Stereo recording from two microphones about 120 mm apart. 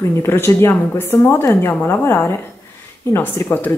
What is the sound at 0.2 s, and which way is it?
A woman's voice, 20° left (ahead or behind).